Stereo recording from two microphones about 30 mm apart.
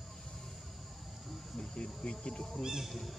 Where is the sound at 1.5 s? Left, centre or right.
Left.